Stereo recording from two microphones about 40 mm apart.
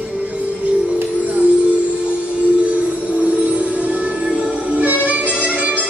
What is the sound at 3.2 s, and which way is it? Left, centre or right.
Music, right.